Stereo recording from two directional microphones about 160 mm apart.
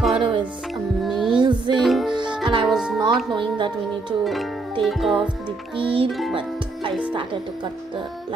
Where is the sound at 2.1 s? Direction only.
30° right (ahead or behind).